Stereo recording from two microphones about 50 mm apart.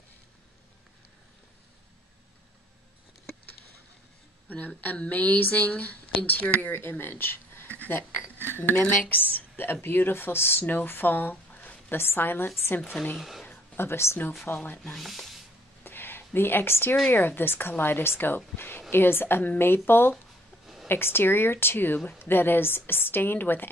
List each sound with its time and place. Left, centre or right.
4.5 s a woman's voice: left
10.6 s speech: left
12.0 s speech: left
13.2 s speech: centre
13.7 s speech: left
14.5 s speech: left
15.0 s speech: centre
15.8 s a sound: left
17.1 s speech: left